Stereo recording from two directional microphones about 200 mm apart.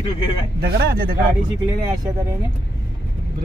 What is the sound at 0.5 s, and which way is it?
Speech, 55° right (ahead or behind).